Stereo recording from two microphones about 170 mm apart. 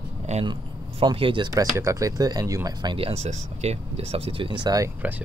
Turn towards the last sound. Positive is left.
turn(degrees=-20)  # may be behind; listen again after turning